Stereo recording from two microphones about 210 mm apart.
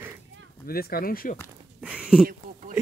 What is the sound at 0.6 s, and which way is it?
Speech, 45° left (ahead or behind).